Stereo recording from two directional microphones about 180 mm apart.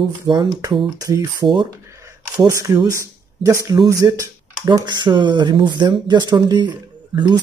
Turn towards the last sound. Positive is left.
turn(degrees=-25)  # may be behind; listen again after turning